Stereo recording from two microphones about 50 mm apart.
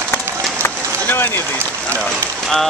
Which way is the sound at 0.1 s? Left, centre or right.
Left.